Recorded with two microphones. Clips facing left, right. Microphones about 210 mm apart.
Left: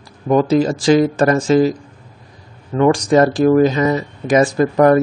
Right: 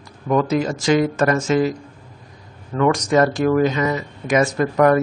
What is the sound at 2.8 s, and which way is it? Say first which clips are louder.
Speech: left 4 dB; 30° left (ahead or behind).